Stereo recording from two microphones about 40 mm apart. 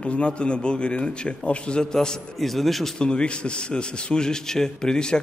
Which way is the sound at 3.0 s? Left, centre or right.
Left.